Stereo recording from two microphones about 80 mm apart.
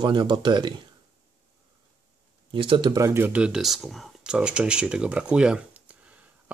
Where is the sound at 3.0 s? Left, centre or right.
Right.